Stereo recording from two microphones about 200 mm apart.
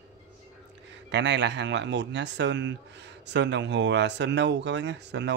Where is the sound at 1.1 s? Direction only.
60° right (ahead or behind).